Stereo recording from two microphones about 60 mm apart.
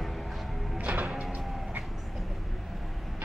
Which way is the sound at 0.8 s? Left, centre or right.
Right.